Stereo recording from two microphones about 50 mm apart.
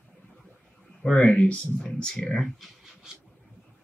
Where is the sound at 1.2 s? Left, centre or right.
Left.